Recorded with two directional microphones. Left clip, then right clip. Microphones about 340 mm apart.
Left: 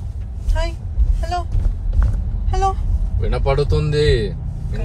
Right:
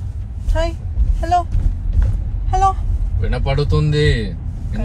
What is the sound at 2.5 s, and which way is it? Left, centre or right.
Vehicle, centre.